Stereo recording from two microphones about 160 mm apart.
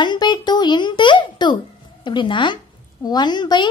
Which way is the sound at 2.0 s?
30° left (ahead or behind).